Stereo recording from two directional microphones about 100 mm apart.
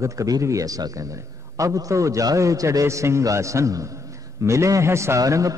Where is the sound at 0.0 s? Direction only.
30° right (ahead or behind).